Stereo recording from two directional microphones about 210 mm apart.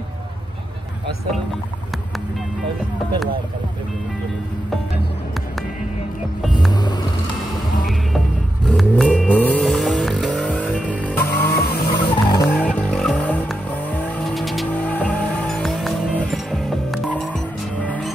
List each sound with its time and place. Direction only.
6.7 s music: 20° left (ahead or behind)
8.6 s vehicle: centre (ahead or behind)
11.9 s vehicle: 20° left (ahead or behind)
12.4 s vehicle: 5° left (ahead or behind)